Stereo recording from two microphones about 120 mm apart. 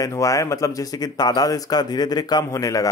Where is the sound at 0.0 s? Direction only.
25° left (ahead or behind).